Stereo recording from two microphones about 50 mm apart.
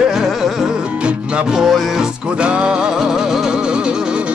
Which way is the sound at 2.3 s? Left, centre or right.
Right.